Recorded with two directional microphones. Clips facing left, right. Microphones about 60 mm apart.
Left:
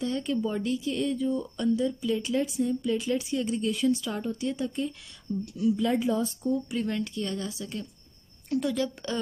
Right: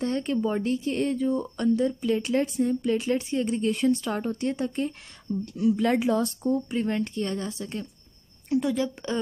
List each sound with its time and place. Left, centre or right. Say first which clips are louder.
0.0 s speech: right 3 dB; right
5.9 s speech: right 3 dB; right
6.4 s speech: right 3 dB; right
8.5 s speech: right 3 dB; right